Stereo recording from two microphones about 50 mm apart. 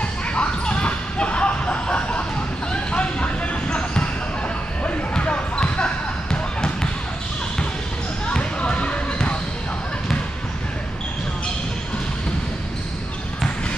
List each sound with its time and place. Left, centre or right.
0.3 s basketball bounce: left
8.3 s basketball bounce: centre